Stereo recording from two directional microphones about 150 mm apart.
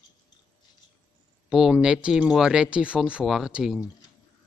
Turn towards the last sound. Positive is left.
turn(degrees=-5)  # may be behind; listen again after turning